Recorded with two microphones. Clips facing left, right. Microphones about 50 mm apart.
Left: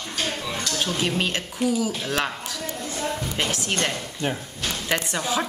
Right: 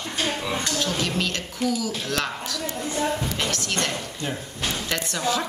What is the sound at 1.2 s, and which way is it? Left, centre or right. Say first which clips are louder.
Speech: left 1 dB; left.